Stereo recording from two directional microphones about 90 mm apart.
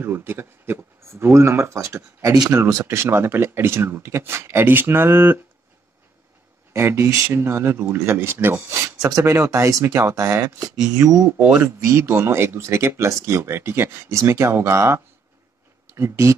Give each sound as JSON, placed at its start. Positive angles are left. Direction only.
{"t": 0.0, "sound": "speech", "side_deg": -25}
{"t": 2.3, "sound": "speech", "side_deg": -45}
{"t": 2.6, "sound": "speech", "side_deg": -35}
{"t": 6.7, "sound": "speech", "side_deg": -30}
{"t": 11.3, "sound": "speech", "side_deg": -15}
{"t": 11.6, "sound": "speech", "side_deg": -30}